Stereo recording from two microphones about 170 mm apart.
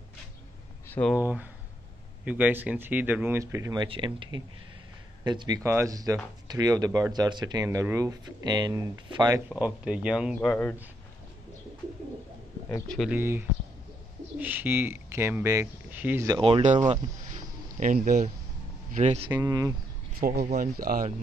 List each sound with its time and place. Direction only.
0.8 s a sound: 10° left (ahead or behind)
1.1 s speech: 10° right (ahead or behind); by 9.4 s 25° right (ahead or behind)
9.5 s speech: 5° right (ahead or behind)
10.5 s speech: 10° left (ahead or behind)
12.8 s speech: 5° left (ahead or behind)
13.1 s speech: 15° right (ahead or behind)
16.3 s speech: 30° right (ahead or behind)
16.9 s a sound: 45° right (ahead or behind)
18.9 s speech: 40° right (ahead or behind)
19.2 s speech: 15° right (ahead or behind)
20.2 s speech: 65° right (ahead or behind)
20.4 s speech: 45° right (ahead or behind)
20.7 s speech: 55° right (ahead or behind)